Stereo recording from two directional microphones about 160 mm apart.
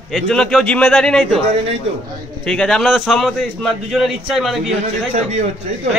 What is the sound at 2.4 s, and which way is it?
A man's voice, 5° left (ahead or behind).